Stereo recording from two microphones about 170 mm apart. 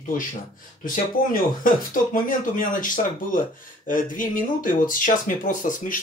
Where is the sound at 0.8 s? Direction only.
55° left (ahead or behind).